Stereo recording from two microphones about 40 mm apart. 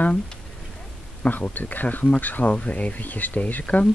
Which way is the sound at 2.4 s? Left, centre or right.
Left.